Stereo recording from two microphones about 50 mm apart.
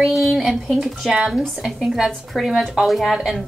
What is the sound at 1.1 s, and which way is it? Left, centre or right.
A woman's voice, centre.